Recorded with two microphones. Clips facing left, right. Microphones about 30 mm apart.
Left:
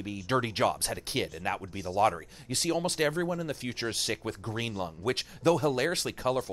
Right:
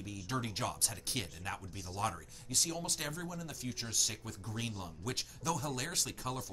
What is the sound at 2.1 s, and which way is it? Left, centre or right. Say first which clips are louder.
Speech: left 4 dB; left.